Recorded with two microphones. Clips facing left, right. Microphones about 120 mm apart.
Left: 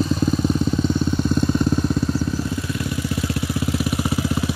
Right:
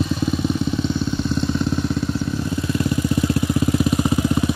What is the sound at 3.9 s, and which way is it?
Vehicle, 20° right (ahead or behind).